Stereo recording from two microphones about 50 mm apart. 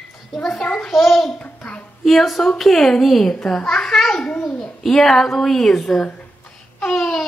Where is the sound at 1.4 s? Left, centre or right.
Left.